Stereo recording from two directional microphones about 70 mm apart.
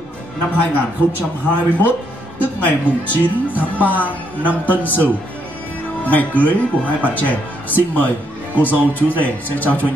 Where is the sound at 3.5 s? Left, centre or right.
Left.